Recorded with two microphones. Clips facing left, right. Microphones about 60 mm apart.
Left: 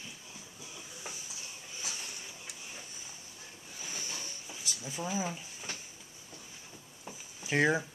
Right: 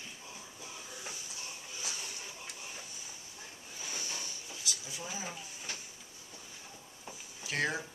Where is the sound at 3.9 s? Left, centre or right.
Left.